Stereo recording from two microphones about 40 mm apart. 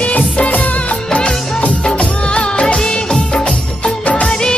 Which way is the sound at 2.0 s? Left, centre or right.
Left.